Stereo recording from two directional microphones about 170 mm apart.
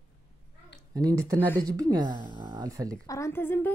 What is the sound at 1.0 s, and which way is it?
Speech, 20° right (ahead or behind).